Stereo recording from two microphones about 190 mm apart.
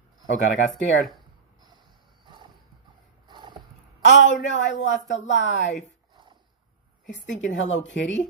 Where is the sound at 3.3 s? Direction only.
25° right (ahead or behind).